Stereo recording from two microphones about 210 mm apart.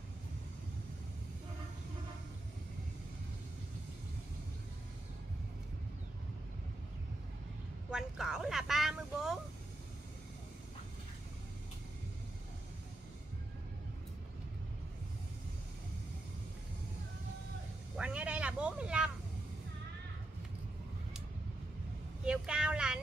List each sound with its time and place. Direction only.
7.9 s speech: 5° right (ahead or behind)
17.9 s a sound: 5° right (ahead or behind)
22.2 s vehicle: 5° right (ahead or behind)